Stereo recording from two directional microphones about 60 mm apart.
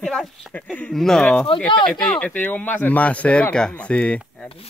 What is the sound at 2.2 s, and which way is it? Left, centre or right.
Speech, left.